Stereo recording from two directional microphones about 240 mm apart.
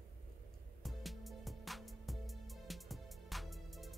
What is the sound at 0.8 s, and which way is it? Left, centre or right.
Music, centre.